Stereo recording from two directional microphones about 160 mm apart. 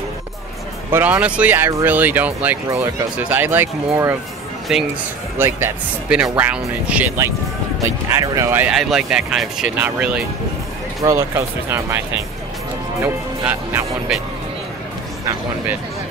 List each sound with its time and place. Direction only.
0.9 s speech: 10° right (ahead or behind)
4.7 s speech: 5° right (ahead or behind)
8.7 s speech: 5° right (ahead or behind)
13.0 s speech: 10° right (ahead or behind)